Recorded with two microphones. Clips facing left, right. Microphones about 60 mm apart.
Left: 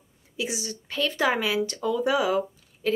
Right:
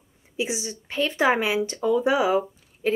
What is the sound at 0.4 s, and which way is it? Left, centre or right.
Speech, right.